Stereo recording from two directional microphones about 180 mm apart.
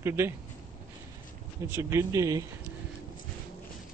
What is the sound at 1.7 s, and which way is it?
Speech, 15° right (ahead or behind).